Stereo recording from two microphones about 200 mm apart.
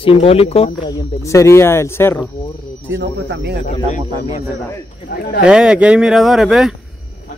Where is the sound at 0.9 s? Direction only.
15° left (ahead or behind).